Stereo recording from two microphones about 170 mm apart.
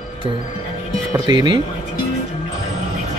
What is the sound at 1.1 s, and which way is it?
Speech, 25° right (ahead or behind).